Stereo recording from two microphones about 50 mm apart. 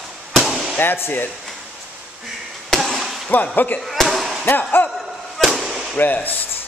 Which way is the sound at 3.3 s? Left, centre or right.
Left.